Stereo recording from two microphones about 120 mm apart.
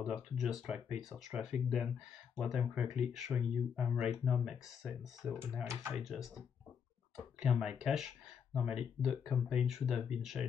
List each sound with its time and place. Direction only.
0.0 s speech: 5° right (ahead or behind)
5.7 s speech: 25° right (ahead or behind)
5.9 s speech: centre (ahead or behind)